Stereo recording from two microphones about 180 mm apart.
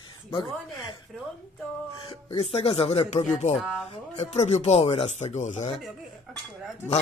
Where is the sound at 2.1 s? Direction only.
30° left (ahead or behind).